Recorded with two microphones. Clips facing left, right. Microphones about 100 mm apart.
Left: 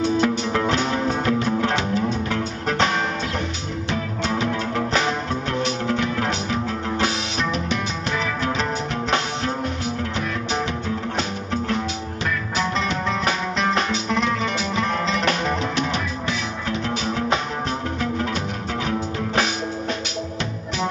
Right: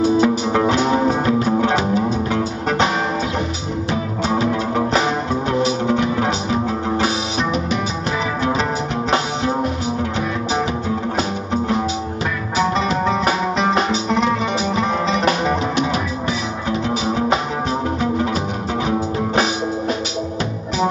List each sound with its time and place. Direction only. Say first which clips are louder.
0.0 s music: right 5 dB; 5° right (ahead or behind)
0.7 s music: right 6 dB; 30° right (ahead or behind)
5.3 s music: right 5 dB; 5° right (ahead or behind)
13.7 s music: right 3 dB; 35° right (ahead or behind)
14.8 s music: right 2 dB; 5° right (ahead or behind)